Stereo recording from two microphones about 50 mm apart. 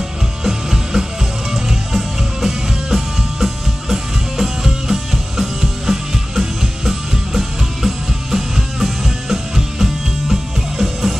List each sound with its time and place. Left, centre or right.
0.4 s music: centre